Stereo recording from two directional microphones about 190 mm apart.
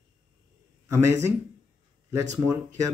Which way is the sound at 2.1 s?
15° right (ahead or behind).